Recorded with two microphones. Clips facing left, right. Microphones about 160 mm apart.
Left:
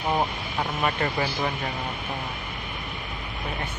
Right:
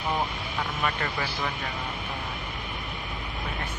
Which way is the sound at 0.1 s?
20° left (ahead or behind).